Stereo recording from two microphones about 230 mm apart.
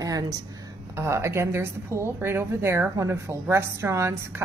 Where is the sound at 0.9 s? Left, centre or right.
Centre.